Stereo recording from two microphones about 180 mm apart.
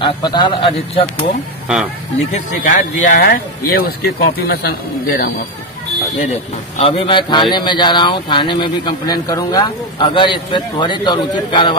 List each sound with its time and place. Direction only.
0.0 s a man's voice: 25° left (ahead or behind)
2.6 s speech: 50° left (ahead or behind)
6.8 s a man's voice: 30° left (ahead or behind)